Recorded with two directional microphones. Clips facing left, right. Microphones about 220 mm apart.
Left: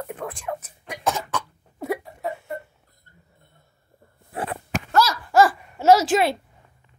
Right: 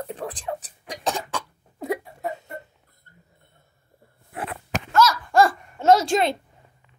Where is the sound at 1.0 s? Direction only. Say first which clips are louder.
Left 2 dB; 15° right (ahead or behind).